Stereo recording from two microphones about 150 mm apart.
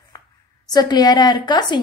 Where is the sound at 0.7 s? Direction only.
25° left (ahead or behind).